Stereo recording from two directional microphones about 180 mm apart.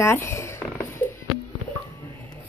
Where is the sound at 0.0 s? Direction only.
15° left (ahead or behind).